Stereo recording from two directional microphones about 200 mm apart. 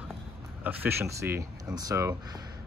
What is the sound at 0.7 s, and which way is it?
Speech, 10° right (ahead or behind).